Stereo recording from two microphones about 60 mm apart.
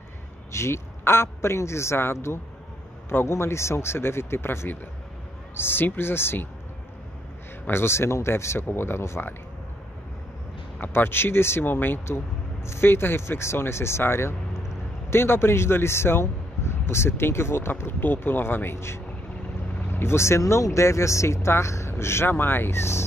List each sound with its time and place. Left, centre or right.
0.5 s speech: left
7.6 s speech: left
10.8 s speech: left